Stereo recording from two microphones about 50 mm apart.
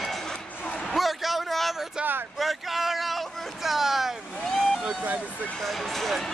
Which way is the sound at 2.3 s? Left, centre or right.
Centre.